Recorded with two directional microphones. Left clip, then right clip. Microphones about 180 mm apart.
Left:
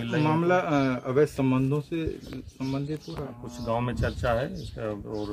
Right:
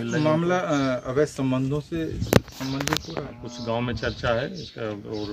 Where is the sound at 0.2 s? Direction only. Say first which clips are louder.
Right 1 dB; 60° left (ahead or behind).